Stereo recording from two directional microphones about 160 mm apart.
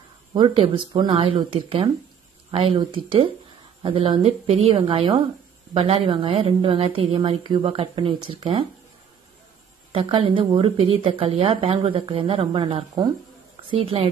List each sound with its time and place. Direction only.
0.3 s a woman's voice: 30° right (ahead or behind)
9.9 s a woman's voice: 35° right (ahead or behind)